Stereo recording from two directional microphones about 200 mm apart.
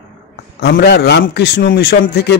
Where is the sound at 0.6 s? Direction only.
55° left (ahead or behind).